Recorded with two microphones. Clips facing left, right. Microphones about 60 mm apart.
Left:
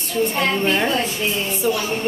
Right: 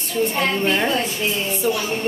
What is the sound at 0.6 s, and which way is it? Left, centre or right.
Speech, centre.